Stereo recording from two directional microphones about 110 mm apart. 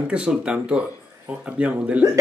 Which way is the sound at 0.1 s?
10° right (ahead or behind).